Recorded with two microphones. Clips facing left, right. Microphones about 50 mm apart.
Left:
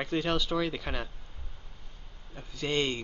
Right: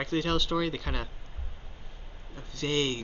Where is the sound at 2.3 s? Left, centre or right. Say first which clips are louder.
Right 1 dB; centre.